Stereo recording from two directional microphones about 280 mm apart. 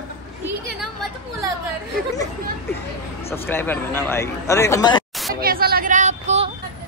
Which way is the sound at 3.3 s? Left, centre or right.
Centre.